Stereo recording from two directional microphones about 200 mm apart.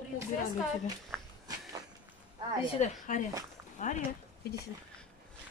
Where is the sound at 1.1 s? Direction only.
Centre (ahead or behind).